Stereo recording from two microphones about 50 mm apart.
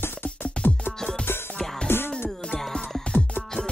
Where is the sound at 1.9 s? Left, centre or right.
Left.